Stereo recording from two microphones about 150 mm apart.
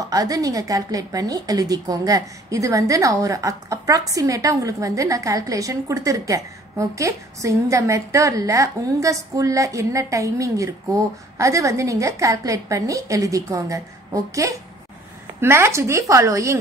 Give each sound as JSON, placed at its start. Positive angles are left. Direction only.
{"t": 0.0, "sound": "a woman's voice", "side_deg": -25}